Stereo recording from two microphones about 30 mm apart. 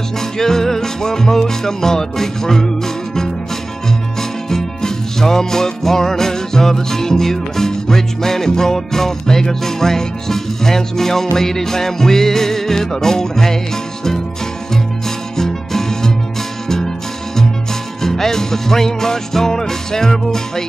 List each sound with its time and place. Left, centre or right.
0.4 s music: centre
15.3 s music: centre
18.0 s music: centre